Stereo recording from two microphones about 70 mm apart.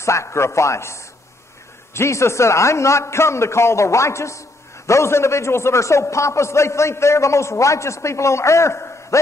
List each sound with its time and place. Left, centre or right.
0.0 s a man's voice: left